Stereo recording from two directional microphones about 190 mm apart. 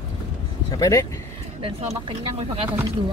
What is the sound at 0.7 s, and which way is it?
Speech, 20° left (ahead or behind).